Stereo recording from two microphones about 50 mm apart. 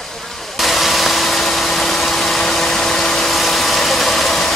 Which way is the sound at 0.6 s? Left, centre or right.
Centre.